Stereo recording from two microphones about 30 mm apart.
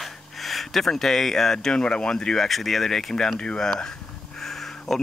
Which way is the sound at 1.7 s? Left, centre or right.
Left.